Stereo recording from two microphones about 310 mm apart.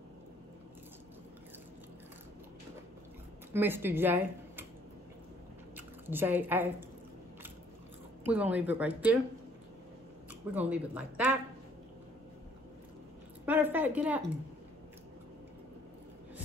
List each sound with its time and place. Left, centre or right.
3.5 s speech: centre
5.8 s squish: centre
8.3 s speech: centre
10.5 s speech: centre
13.5 s speech: centre